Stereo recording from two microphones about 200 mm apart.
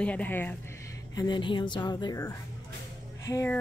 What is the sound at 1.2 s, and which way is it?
A woman's voice, 25° left (ahead or behind).